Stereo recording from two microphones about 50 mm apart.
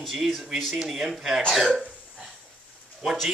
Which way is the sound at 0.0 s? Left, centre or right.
Centre.